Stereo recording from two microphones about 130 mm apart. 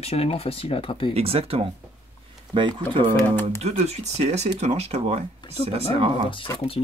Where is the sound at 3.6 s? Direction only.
55° right (ahead or behind).